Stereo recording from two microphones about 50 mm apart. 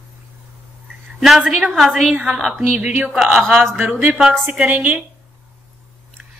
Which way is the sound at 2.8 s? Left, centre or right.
Right.